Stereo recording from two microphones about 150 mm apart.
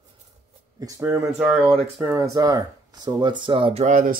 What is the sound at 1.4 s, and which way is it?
Speech, 10° right (ahead or behind).